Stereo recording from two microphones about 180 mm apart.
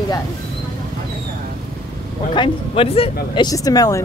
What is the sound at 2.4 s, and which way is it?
Speech, 30° left (ahead or behind).